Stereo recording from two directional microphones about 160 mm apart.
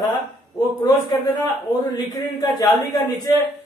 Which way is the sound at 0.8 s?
25° left (ahead or behind).